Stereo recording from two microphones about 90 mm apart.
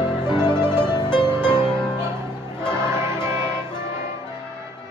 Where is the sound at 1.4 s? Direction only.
10° left (ahead or behind).